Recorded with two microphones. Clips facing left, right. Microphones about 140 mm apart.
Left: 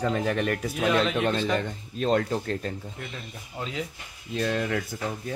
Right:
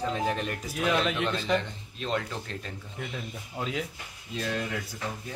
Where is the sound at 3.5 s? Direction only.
Centre (ahead or behind).